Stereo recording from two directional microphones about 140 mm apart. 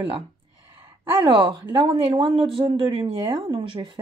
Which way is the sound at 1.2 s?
40° right (ahead or behind).